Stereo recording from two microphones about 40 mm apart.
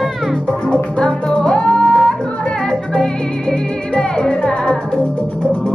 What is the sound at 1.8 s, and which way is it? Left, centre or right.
Music, centre.